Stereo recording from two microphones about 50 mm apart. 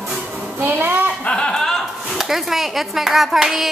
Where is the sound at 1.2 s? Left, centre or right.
Centre.